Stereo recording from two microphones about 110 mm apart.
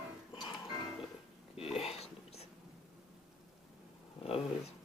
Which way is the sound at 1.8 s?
65° left (ahead or behind).